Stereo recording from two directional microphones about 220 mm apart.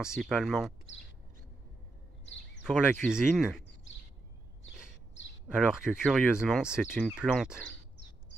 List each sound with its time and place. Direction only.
0.0 s speech: centre (ahead or behind)
2.6 s speech: 5° right (ahead or behind)
5.7 s speech: 5° right (ahead or behind)